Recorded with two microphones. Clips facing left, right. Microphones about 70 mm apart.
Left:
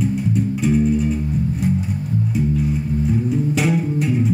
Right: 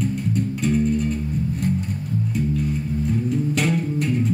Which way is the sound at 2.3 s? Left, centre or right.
Centre.